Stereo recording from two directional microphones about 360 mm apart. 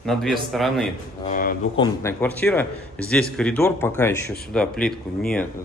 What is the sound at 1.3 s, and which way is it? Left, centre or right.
Speech, left.